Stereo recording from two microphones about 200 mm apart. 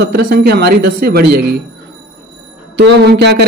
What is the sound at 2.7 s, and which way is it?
Speech, 60° right (ahead or behind).